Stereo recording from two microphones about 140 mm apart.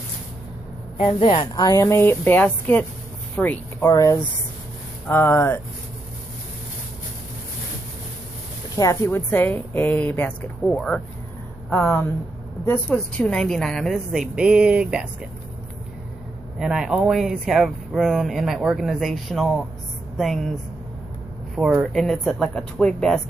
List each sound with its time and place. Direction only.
0.9 s a woman's voice: 40° left (ahead or behind); by 5.6 s 15° left (ahead or behind)
8.7 s a woman's voice: 20° left (ahead or behind)
10.7 s speech: centre (ahead or behind)
11.8 s a woman's voice: 15° left (ahead or behind); by 15.0 s 5° right (ahead or behind)
16.5 s speech: 5° right (ahead or behind)
21.5 s speech: 5° right (ahead or behind)